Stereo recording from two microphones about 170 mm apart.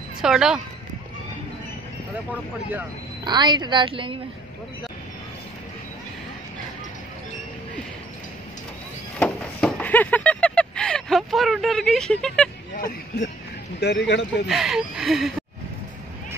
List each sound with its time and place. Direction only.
0.2 s speech: 5° right (ahead or behind)
3.3 s a woman's voice: 25° right (ahead or behind)
9.2 s a sound: 5° left (ahead or behind)
12.7 s a sound: 60° left (ahead or behind)
13.7 s speech: 85° left
14.5 s speech: centre (ahead or behind)